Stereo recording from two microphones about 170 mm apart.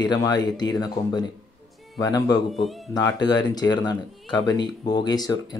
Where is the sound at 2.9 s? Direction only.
20° left (ahead or behind).